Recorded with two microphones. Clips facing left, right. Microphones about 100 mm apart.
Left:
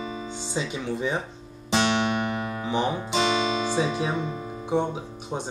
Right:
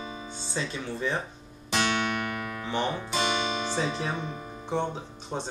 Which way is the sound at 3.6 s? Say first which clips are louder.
Left 4 dB; 10° left (ahead or behind).